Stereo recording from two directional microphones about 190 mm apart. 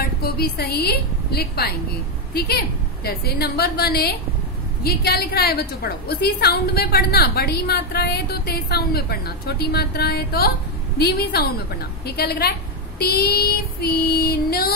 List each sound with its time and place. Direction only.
0.2 s a woman's voice: 55° left (ahead or behind)